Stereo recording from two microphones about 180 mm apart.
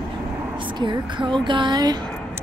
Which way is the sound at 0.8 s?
25° right (ahead or behind).